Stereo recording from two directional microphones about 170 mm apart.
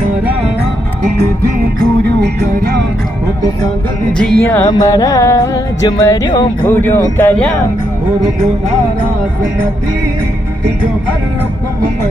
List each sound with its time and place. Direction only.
2.5 s music: 60° right (ahead or behind)
4.2 s music: 5° left (ahead or behind)
4.6 s music: 20° left (ahead or behind)